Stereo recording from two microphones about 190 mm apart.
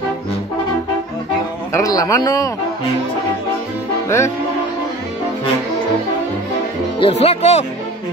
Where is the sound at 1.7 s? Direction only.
15° left (ahead or behind).